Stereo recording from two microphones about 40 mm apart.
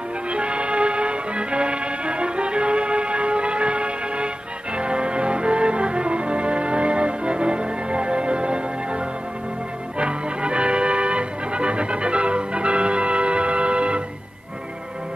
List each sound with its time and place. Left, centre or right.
0.3 s music: right